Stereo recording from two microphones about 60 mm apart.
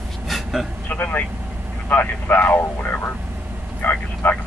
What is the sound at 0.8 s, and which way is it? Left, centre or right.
A man's voice, left.